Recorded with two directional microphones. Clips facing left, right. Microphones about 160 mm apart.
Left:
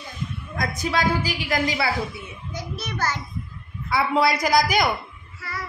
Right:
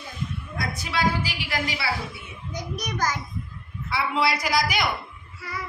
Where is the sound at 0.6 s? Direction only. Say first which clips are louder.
Left 3 dB; 45° left (ahead or behind).